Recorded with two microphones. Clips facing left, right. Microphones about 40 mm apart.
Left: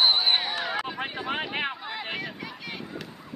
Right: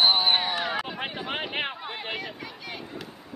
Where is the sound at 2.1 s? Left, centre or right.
Centre.